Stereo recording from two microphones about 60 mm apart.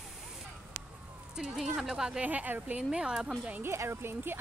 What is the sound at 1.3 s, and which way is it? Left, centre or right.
Speech, centre.